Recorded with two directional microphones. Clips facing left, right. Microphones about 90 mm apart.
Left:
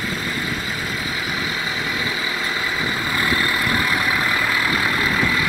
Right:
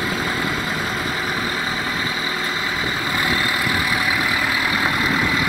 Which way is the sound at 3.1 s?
20° right (ahead or behind).